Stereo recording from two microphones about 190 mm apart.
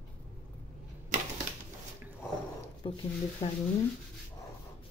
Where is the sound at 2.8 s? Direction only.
25° left (ahead or behind).